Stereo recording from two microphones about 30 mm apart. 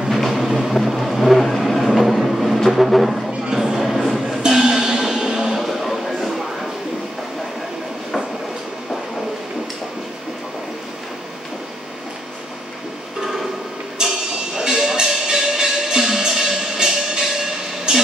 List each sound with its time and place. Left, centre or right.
0.1 s music: centre
0.5 s vehicle: centre
2.7 s music: centre
3.5 s a sound: centre
4.6 s music: centre
5.6 s a sound: centre
14.0 s music: right
14.6 s a sound: centre
15.2 s music: right